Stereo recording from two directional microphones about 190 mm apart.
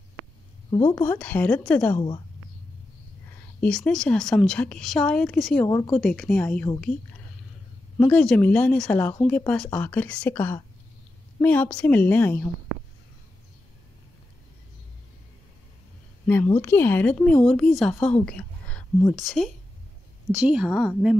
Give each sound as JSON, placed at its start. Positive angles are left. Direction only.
{"t": 0.7, "sound": "speech", "side_deg": 25}
{"t": 1.0, "sound": "a woman's voice", "side_deg": 10}
{"t": 2.0, "sound": "a woman's voice", "side_deg": 25}
{"t": 3.6, "sound": "a woman's voice", "side_deg": 5}
{"t": 5.7, "sound": "a woman's voice", "side_deg": 20}
{"t": 5.9, "sound": "a woman's voice", "side_deg": 5}
{"t": 8.0, "sound": "a woman's voice", "side_deg": 5}
{"t": 16.6, "sound": "a woman's voice", "side_deg": 10}